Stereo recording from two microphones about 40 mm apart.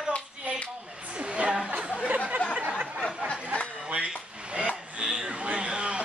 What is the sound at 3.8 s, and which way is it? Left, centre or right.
Drawer open or close, right.